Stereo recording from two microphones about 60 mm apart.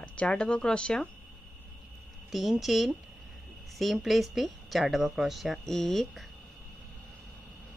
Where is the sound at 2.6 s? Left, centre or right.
Centre.